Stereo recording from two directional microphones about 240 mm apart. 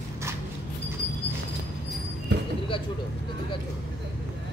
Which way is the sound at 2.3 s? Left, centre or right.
Right.